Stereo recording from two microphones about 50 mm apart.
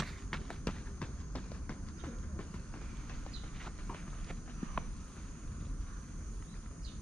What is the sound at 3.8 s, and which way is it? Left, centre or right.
Clip-clop, centre.